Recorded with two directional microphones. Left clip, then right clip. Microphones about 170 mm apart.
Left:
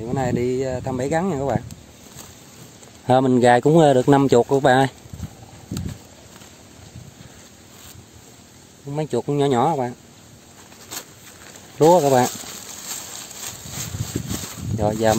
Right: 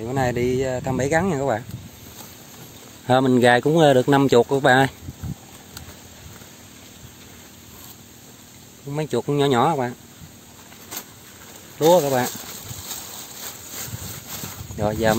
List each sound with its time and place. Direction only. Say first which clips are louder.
0.0 s speech: right 1 dB; centre (ahead or behind)
3.1 s speech: left 1 dB; 20° left (ahead or behind)
8.9 s speech: even; 15° left (ahead or behind)
11.9 s speech: left 1 dB; 25° left (ahead or behind)
14.8 s speech: left 2 dB; 15° left (ahead or behind)